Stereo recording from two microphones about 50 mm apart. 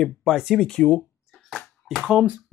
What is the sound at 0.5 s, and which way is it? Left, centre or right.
Speech, centre.